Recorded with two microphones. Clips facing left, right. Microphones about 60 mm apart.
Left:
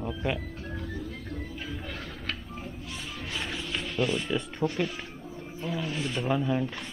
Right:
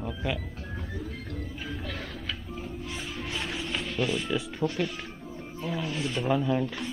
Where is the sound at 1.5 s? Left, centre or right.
Centre.